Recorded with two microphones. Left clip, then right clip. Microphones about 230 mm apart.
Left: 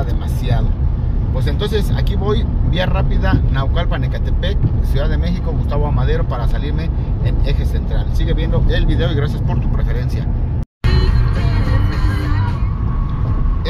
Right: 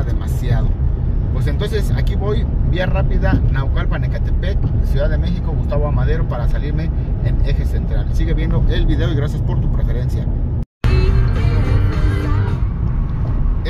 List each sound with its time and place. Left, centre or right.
1.6 s speech: centre
5.9 s speech: centre
8.3 s speech: centre